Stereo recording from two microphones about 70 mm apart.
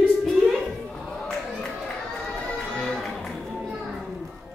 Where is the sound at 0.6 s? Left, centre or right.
Centre.